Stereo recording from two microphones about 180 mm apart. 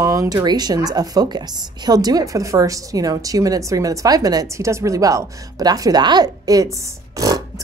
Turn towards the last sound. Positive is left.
turn(degrees=-20)  # may be behind; listen again after turning